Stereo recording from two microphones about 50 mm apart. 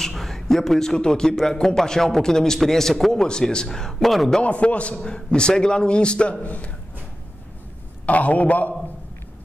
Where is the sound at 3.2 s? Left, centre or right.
Centre.